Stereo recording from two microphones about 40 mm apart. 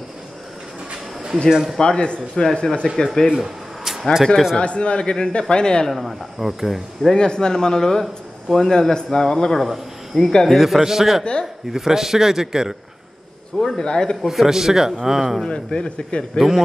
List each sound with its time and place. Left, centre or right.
1.5 s a man's voice: centre
1.8 s speech: left
3.3 s a sound: centre
4.6 s speech: left
5.9 s speech: centre
7.2 s a man's voice: centre
10.6 s a man's voice: centre
13.7 s a man's voice: centre
14.2 s a man's voice: centre
15.4 s speech: left
16.3 s speech: centre